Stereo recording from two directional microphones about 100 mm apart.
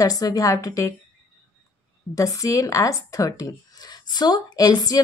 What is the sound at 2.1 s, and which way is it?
Speech, 35° left (ahead or behind).